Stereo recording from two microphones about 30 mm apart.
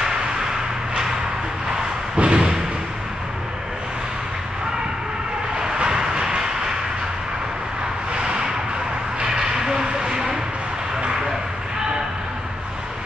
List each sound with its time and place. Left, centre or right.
2.1 s thump: right
5.6 s vehicle: right
8.1 s a sound: right
9.2 s vehicle: right